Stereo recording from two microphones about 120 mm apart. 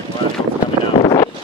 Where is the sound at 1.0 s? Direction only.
40° left (ahead or behind).